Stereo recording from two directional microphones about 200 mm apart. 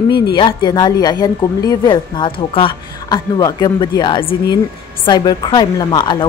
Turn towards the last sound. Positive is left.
turn(degrees=20)  # may be behind; listen again after turning